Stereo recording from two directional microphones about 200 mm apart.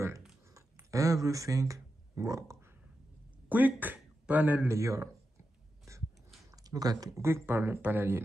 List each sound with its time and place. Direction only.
0.9 s speech: 15° right (ahead or behind)
5.9 s a sound: 15° right (ahead or behind)
6.5 s speech: 20° right (ahead or behind)